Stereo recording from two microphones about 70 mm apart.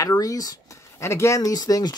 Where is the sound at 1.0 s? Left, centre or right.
Left.